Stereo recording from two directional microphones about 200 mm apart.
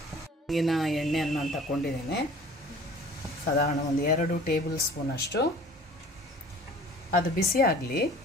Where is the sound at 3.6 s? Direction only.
50° left (ahead or behind).